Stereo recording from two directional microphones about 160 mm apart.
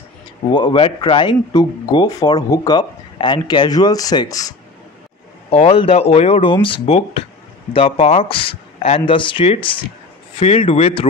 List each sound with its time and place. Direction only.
0.5 s speech: 30° left (ahead or behind)
5.5 s speech: 40° left (ahead or behind)